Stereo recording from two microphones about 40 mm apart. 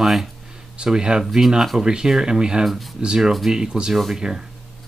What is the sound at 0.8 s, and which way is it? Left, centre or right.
Speech, right.